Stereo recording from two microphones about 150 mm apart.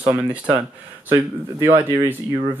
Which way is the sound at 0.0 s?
10° right (ahead or behind).